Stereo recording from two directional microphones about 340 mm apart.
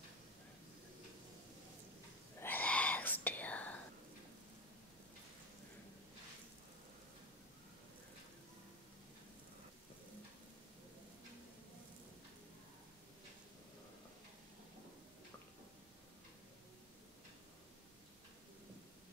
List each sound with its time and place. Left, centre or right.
2.4 s whispering: centre